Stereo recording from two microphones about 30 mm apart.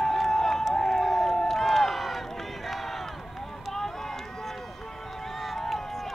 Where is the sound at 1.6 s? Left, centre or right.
Centre.